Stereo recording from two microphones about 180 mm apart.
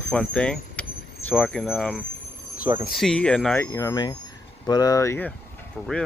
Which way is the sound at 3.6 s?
20° left (ahead or behind).